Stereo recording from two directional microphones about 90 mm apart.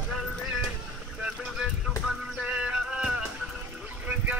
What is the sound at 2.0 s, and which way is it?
Music, 10° right (ahead or behind).